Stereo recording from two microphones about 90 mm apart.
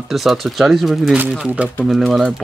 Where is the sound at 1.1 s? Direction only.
15° right (ahead or behind).